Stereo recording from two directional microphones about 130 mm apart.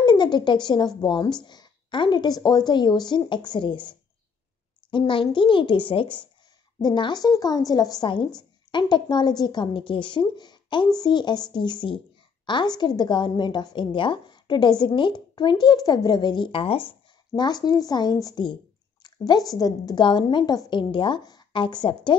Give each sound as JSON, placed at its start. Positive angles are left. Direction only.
{"t": 0.0, "sound": "a woman's voice", "side_deg": 35}
{"t": 4.9, "sound": "a woman's voice", "side_deg": 40}
{"t": 17.5, "sound": "a woman's voice", "side_deg": 30}